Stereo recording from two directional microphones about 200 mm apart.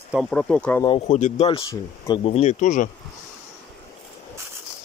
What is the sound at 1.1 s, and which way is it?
Speech, 40° left (ahead or behind).